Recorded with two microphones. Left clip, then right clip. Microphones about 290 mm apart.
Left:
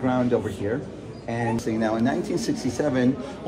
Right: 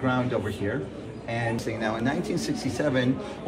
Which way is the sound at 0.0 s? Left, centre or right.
Left.